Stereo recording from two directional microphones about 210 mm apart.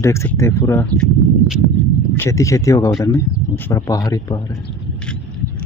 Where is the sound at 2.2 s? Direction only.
15° left (ahead or behind).